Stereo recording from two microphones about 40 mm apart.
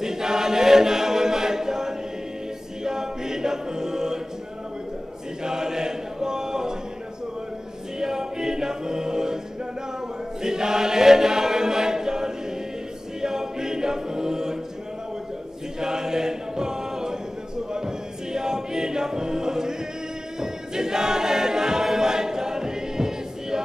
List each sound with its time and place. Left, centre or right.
0.0 s choir: centre
5.4 s chant: centre
8.0 s music: centre
10.4 s chant: centre
13.2 s choir: centre
15.8 s chant: centre
17.7 s a capella: centre
20.3 s choir: centre